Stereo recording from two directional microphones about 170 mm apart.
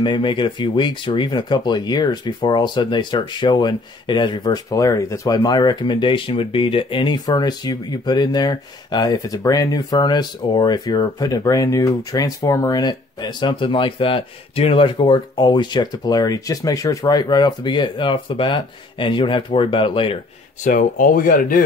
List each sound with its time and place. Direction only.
0.0 s speech: 30° left (ahead or behind)
20.6 s speech: 55° left (ahead or behind)